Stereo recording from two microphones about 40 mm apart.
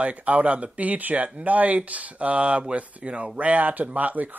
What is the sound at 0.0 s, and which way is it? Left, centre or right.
Speech, right.